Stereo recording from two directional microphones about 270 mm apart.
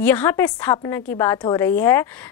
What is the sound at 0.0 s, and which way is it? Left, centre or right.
A woman's voice, centre.